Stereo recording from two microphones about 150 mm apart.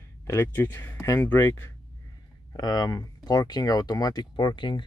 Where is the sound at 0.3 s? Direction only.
15° left (ahead or behind).